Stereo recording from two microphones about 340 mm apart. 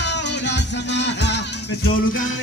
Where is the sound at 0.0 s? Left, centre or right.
Left.